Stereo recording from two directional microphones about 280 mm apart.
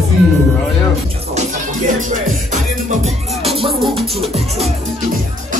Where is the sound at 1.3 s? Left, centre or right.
Right.